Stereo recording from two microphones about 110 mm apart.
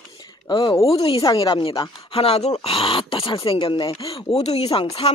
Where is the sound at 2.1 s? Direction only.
60° left (ahead or behind).